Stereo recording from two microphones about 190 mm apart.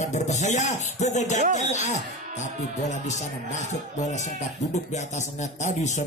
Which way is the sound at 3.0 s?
40° left (ahead or behind).